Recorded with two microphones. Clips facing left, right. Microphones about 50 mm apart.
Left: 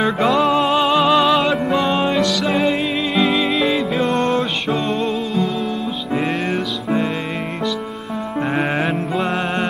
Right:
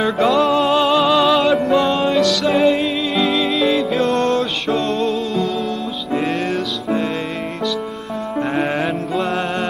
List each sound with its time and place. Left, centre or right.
0.0 s music: centre
2.4 s music: centre
8.4 s music: centre